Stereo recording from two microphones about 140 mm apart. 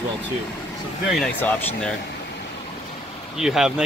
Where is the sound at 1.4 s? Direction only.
15° left (ahead or behind).